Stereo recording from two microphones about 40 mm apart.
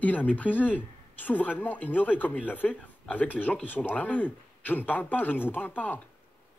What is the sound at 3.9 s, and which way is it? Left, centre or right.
Speech, left.